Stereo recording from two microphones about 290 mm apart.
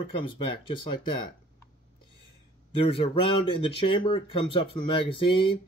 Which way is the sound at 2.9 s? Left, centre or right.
Centre.